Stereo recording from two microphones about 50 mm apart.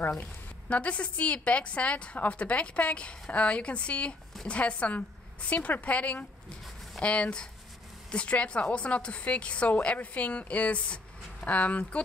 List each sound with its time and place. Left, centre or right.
0.2 s a woman's voice: left